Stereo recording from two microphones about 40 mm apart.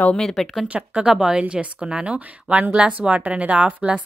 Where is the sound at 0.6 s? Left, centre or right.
Right.